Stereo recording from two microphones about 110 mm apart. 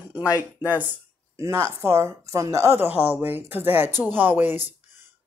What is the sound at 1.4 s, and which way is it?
A woman's voice, 25° right (ahead or behind).